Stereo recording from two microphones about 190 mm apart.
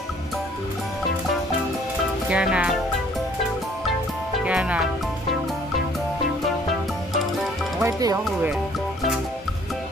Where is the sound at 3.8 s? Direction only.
Centre (ahead or behind).